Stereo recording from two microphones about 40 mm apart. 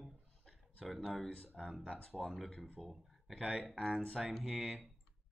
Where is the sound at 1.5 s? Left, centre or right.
Centre.